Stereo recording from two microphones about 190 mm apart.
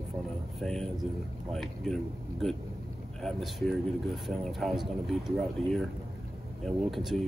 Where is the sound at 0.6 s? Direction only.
Centre (ahead or behind).